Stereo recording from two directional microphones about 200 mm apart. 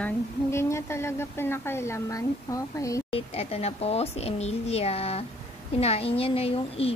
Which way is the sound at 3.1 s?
30° left (ahead or behind).